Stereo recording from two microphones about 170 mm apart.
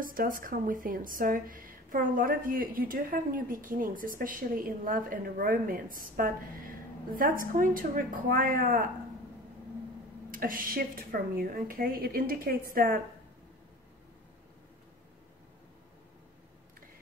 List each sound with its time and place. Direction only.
0.0 s speech: 55° right (ahead or behind)
10.3 s speech: 55° right (ahead or behind)